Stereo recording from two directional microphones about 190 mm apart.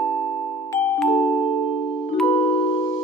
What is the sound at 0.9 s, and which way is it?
Music, centre (ahead or behind).